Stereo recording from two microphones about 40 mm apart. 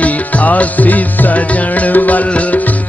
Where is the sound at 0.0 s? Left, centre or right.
Left.